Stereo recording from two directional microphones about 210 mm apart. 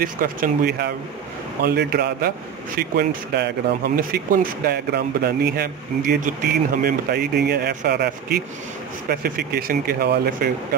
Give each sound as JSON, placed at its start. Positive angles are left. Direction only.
{"t": 0.0, "sound": "speech", "side_deg": -40}